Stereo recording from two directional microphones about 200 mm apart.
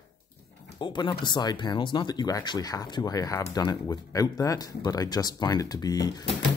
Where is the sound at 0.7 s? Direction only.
25° left (ahead or behind).